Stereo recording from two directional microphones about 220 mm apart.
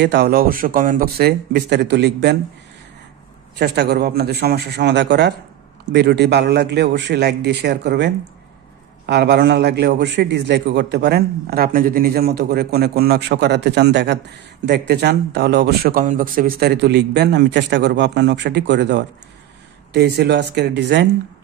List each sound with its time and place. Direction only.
0.0 s a man's voice: 50° right (ahead or behind)
3.5 s a man's voice: 50° right (ahead or behind)